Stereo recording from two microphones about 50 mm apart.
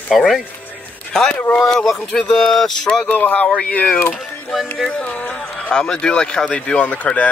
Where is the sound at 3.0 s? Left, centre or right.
Left.